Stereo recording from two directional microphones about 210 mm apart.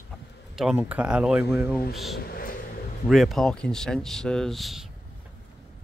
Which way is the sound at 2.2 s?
45° left (ahead or behind).